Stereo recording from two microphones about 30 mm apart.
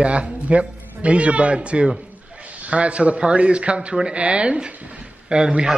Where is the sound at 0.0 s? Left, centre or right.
Right.